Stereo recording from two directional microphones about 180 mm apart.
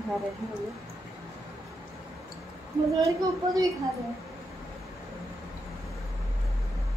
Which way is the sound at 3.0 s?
20° right (ahead or behind).